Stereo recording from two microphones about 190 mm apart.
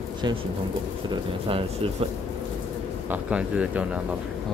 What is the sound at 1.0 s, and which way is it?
Speech, 30° right (ahead or behind).